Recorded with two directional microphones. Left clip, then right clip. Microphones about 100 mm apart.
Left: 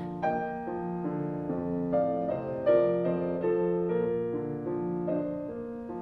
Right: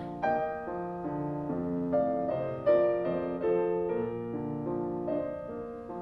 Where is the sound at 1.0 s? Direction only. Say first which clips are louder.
Left 1 dB; 15° left (ahead or behind).